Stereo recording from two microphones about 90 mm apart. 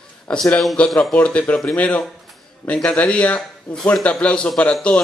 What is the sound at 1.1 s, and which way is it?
A man's voice, 15° left (ahead or behind).